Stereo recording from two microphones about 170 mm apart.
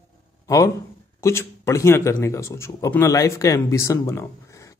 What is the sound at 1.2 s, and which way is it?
Speech, 15° left (ahead or behind).